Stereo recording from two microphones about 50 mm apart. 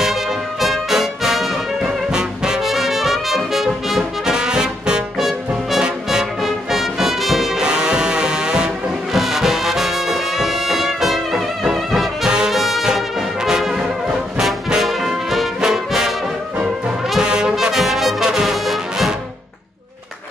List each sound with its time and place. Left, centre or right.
0.0 s brass instrument: centre
2.0 s music: centre
2.6 s brass instrument: centre
5.2 s brass instrument: centre
6.0 s music: centre
7.6 s music: centre
12.3 s brass instrument: centre
12.5 s brass instrument: centre
17.2 s brass instrument: centre